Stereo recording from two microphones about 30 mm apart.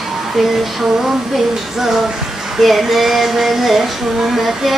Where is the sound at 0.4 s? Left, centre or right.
Centre.